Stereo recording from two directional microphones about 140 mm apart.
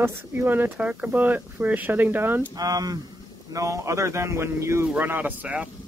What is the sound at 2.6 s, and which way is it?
A man's voice, 25° right (ahead or behind).